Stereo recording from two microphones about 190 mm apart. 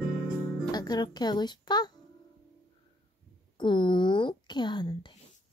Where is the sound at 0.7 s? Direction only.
20° left (ahead or behind).